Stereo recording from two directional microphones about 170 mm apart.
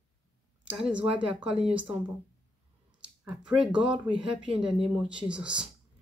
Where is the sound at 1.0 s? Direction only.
30° right (ahead or behind).